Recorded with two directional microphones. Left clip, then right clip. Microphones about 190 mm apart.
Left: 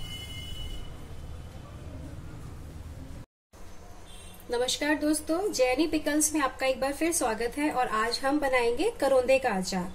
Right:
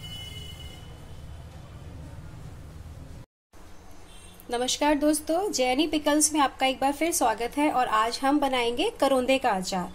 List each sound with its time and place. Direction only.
4.5 s a woman's voice: 40° right (ahead or behind)